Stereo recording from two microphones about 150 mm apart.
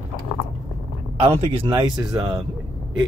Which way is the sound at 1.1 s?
45° right (ahead or behind).